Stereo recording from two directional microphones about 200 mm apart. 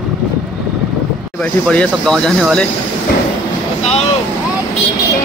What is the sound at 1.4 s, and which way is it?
Speech, 5° left (ahead or behind).